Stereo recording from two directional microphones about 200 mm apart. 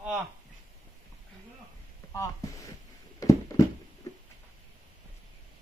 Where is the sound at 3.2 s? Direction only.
15° left (ahead or behind).